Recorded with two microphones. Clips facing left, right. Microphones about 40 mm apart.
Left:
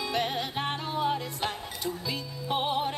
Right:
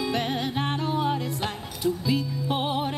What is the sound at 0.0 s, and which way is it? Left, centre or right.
Music, centre.